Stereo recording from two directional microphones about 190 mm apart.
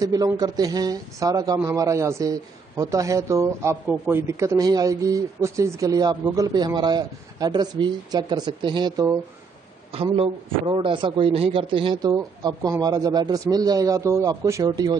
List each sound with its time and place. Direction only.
0.0 s a man's voice: 20° right (ahead or behind)